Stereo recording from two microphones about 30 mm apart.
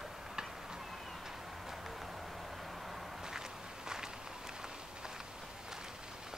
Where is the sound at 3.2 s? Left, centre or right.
Right.